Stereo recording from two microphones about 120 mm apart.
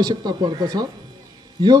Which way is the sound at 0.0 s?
35° right (ahead or behind).